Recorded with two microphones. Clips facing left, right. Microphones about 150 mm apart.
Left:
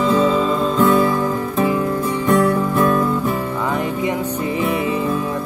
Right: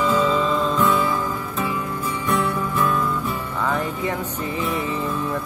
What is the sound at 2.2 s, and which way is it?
Music, 60° left (ahead or behind).